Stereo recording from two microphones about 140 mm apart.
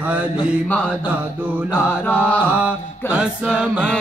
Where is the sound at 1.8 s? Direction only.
15° left (ahead or behind).